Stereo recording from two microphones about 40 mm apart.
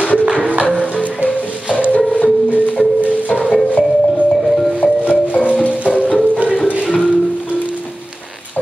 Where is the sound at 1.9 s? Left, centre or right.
Left.